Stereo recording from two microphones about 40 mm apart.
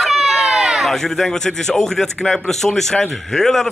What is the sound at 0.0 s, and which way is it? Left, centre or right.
Run, centre.